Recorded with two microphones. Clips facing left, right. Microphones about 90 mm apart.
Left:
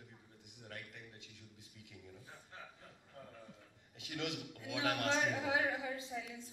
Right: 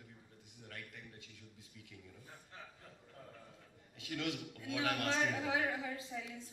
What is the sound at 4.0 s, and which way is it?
A man's voice, 20° left (ahead or behind).